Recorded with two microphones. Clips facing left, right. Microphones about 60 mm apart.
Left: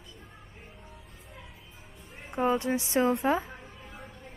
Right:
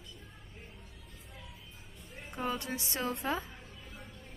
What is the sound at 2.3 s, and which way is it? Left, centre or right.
A woman's voice, left.